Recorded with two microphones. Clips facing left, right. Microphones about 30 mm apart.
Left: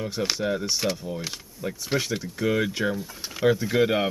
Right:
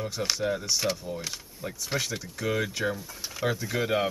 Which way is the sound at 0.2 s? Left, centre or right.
Centre.